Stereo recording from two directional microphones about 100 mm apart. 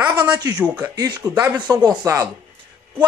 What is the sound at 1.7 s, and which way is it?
Speech, 45° right (ahead or behind).